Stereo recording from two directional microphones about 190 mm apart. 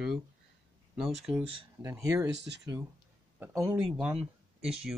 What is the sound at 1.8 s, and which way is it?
Speech, 15° right (ahead or behind).